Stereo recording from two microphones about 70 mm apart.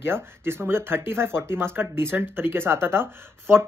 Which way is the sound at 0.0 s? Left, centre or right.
Right.